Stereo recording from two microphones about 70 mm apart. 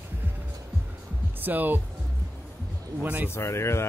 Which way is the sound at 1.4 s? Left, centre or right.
Right.